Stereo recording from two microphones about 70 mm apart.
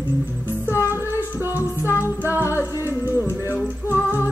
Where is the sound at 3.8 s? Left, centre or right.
Right.